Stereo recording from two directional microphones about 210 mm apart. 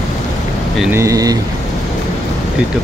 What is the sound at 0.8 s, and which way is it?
Speech, 10° right (ahead or behind).